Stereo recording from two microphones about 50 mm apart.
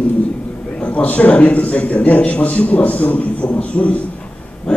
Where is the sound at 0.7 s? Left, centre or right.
Left.